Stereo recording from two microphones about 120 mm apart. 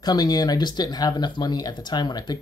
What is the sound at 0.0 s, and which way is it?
Speech, 35° left (ahead or behind).